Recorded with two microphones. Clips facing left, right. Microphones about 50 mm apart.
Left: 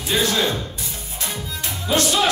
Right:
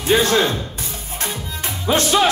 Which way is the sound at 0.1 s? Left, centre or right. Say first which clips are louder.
Right 5 dB; right.